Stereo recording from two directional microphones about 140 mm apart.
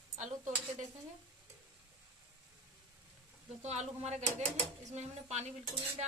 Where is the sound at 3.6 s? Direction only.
50° right (ahead or behind).